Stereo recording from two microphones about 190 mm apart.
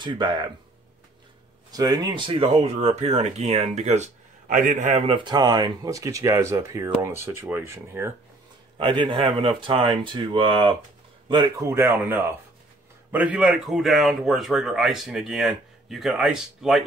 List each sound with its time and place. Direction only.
0.0 s speech: 25° right (ahead or behind)
1.7 s speech: 20° right (ahead or behind)
8.7 s speech: 25° right (ahead or behind); by 16.8 s centre (ahead or behind)